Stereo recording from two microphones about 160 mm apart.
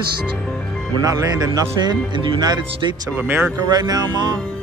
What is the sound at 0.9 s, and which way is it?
Speech, 25° right (ahead or behind).